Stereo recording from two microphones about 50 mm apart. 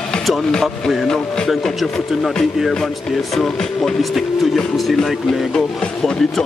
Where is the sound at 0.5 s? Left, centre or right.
Centre.